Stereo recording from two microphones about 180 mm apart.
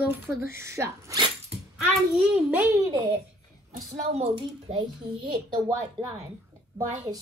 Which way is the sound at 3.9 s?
35° right (ahead or behind).